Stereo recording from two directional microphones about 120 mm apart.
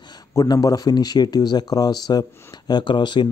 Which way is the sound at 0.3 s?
30° left (ahead or behind).